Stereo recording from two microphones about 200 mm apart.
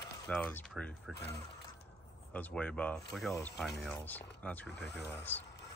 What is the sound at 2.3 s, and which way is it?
Speech, 5° left (ahead or behind).